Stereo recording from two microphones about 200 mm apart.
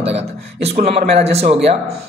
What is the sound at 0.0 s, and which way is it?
Speech, 30° right (ahead or behind).